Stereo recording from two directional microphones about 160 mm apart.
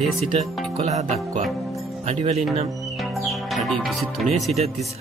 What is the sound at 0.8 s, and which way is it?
Speech, 45° right (ahead or behind).